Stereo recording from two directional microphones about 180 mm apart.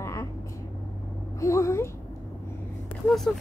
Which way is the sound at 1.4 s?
15° left (ahead or behind).